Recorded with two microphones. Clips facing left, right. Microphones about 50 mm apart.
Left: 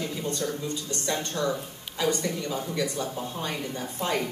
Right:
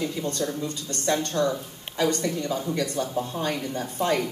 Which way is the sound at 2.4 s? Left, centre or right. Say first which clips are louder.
Right 2 dB; right.